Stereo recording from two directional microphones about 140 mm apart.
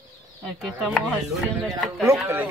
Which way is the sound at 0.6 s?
Centre (ahead or behind).